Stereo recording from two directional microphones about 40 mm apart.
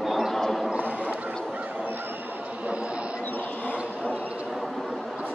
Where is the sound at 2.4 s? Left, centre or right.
Right.